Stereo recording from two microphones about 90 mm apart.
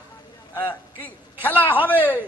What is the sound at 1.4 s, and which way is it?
Speech, 20° left (ahead or behind).